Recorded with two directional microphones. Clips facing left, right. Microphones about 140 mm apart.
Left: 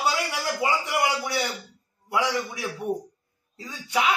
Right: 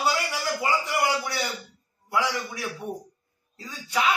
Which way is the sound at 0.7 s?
25° left (ahead or behind).